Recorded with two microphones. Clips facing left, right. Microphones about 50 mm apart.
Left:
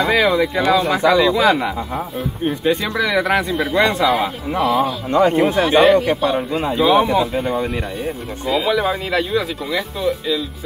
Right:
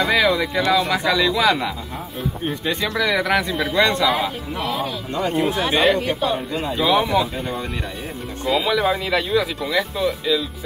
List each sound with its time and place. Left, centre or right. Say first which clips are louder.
0.1 s speech: left 2 dB; centre
5.1 s speech: left 7 dB; left
5.7 s speech: left 6 dB; centre
7.0 s speech: left 4 dB; centre